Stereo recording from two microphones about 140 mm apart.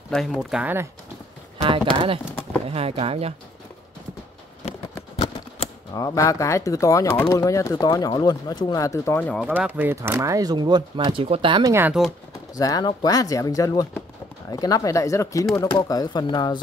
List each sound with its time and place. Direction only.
0.1 s speech: 5° left (ahead or behind)
1.6 s speech: 40° right (ahead or behind)
5.9 s speech: 25° left (ahead or behind)
9.4 s speech: 10° right (ahead or behind); by 11.6 s 40° right (ahead or behind)
11.6 s speech: 20° right (ahead or behind)
12.5 s speech: 25° left (ahead or behind)